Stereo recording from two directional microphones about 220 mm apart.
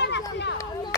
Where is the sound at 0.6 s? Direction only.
15° left (ahead or behind).